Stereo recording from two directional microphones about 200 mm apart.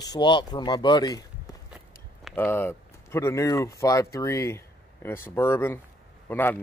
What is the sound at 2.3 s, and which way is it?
Speech, 10° left (ahead or behind).